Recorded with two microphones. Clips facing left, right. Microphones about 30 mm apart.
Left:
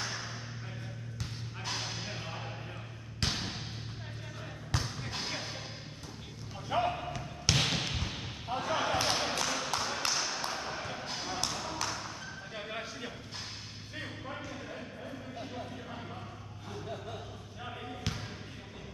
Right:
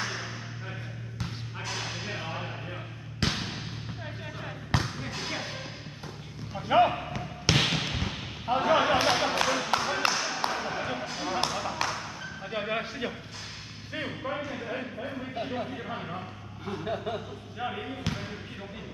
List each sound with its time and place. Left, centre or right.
0.0 s whip: right
2.0 s music: right
3.2 s basketball bounce: centre
4.6 s basketball bounce: right
6.7 s basketball bounce: right
7.9 s a sound: right
11.2 s basketball bounce: right
12.4 s a sound: right
13.9 s speech: right